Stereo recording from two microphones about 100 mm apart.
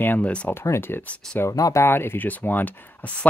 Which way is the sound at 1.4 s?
35° left (ahead or behind).